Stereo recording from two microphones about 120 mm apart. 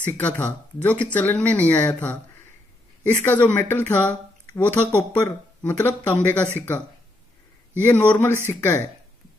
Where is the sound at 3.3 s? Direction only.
15° left (ahead or behind).